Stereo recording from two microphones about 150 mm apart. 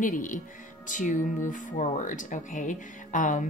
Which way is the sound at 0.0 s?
60° left (ahead or behind).